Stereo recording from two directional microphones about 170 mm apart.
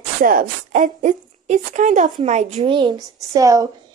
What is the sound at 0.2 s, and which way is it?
A woman's voice, 55° right (ahead or behind).